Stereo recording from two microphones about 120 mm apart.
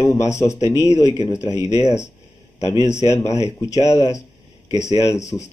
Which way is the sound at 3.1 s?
25° left (ahead or behind).